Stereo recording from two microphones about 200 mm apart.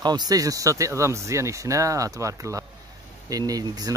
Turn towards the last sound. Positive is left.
turn(degrees=-20)  # may be behind; listen again after turning